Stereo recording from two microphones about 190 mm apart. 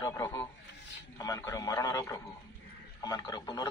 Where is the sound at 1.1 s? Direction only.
20° left (ahead or behind).